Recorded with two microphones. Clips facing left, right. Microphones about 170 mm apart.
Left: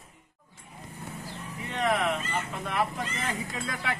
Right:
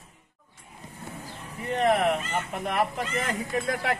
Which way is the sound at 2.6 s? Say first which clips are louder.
Right 3 dB; 55° right (ahead or behind).